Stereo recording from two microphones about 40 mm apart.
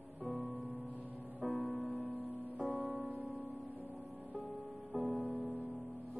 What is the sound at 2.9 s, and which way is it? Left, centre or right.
Music, left.